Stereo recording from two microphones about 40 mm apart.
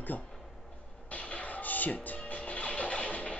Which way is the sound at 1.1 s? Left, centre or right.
Left.